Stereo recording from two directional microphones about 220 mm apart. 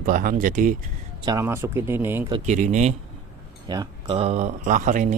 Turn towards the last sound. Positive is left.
turn(degrees=-35)  # may be behind; listen again after turning